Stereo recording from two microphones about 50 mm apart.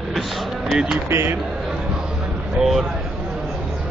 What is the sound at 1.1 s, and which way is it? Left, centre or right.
Speech, right.